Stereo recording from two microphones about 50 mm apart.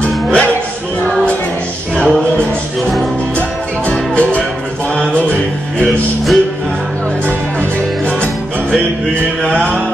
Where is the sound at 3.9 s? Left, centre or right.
Left.